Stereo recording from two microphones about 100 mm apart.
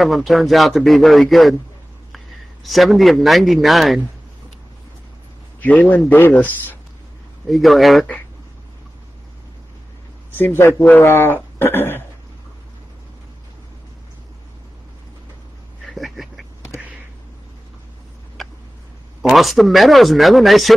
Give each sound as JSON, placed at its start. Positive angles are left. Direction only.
{"t": 0.0, "sound": "a man's voice", "side_deg": 0}
{"t": 5.6, "sound": "a man's voice", "side_deg": 15}
{"t": 7.4, "sound": "a man's voice", "side_deg": 0}
{"t": 10.3, "sound": "speech", "side_deg": 20}
{"t": 15.9, "sound": "a sound", "side_deg": 0}
{"t": 18.4, "sound": "tick", "side_deg": 0}
{"t": 19.3, "sound": "a man's voice", "side_deg": 0}